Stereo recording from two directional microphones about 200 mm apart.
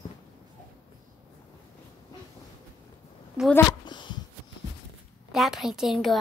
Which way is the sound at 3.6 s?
20° left (ahead or behind).